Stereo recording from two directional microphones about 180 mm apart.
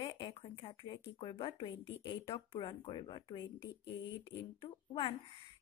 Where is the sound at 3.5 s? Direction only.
75° left (ahead or behind).